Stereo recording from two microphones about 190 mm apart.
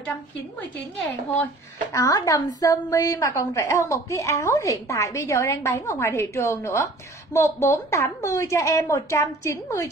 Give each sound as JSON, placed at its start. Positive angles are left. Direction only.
{"t": 1.9, "sound": "a woman's voice", "side_deg": 20}